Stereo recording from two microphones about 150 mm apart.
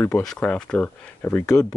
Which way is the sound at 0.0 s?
5° left (ahead or behind).